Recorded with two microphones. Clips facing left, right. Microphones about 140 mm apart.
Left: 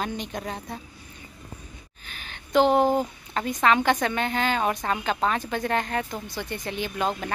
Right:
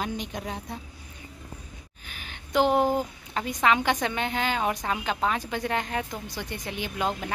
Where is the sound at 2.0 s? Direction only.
10° right (ahead or behind).